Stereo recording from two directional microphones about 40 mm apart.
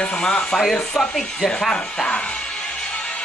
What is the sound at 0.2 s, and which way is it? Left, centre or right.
Speech, left.